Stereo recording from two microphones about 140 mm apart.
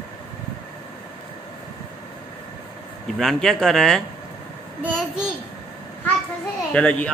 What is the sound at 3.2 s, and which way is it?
Speech, centre (ahead or behind).